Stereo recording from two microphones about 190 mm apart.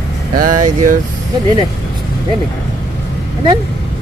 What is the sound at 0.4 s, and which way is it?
Speech, 45° right (ahead or behind).